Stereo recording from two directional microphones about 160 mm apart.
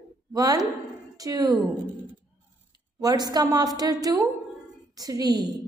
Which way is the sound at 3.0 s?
25° right (ahead or behind).